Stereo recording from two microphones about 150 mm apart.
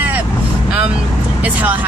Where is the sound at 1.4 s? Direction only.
10° right (ahead or behind).